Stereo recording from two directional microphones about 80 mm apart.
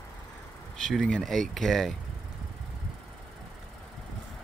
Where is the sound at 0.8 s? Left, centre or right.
Centre.